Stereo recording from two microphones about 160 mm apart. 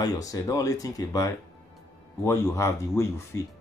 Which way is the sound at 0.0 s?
20° left (ahead or behind).